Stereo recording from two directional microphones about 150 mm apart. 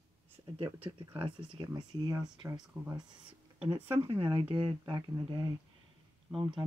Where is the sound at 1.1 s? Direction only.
35° right (ahead or behind).